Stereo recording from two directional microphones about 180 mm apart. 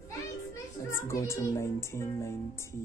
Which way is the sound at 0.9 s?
15° left (ahead or behind).